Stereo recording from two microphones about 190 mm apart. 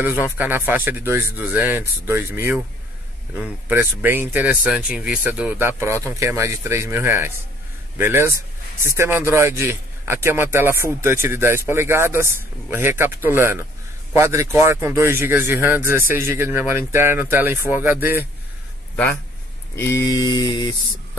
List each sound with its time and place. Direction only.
0.0 s a man's voice: 10° right (ahead or behind)
19.7 s speech: 15° left (ahead or behind)